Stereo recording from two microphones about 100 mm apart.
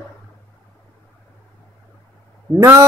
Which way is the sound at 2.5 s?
25° right (ahead or behind).